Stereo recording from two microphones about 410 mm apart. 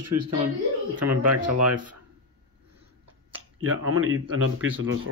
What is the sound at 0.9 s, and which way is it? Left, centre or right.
Speech, right.